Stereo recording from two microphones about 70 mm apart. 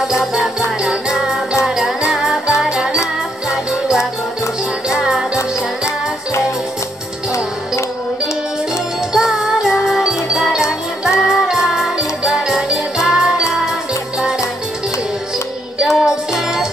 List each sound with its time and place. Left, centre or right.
0.0 s music: centre
5.3 s music: left
8.7 s music: centre
15.8 s music: centre